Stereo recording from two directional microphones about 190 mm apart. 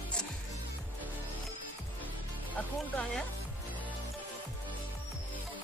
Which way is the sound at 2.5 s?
5° left (ahead or behind).